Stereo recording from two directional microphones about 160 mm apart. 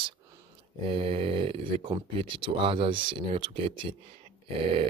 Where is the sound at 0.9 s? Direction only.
35° right (ahead or behind).